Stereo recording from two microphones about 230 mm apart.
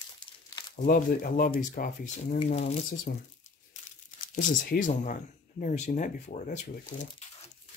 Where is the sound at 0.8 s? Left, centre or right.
Left.